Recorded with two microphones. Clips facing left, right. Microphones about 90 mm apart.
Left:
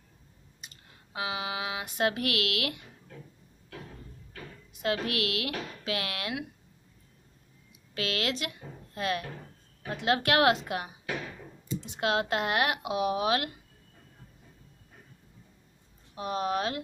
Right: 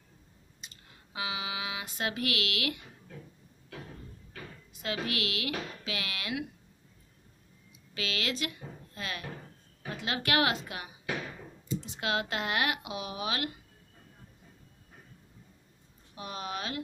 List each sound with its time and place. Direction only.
1.1 s speech: 45° left (ahead or behind)
4.8 s speech: 55° left (ahead or behind)
7.9 s speech: 55° left (ahead or behind)
11.8 s speech: 60° left (ahead or behind)
16.2 s speech: 55° left (ahead or behind)